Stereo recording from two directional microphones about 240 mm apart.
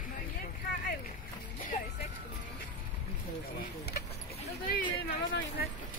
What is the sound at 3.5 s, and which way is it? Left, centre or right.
Speech, left.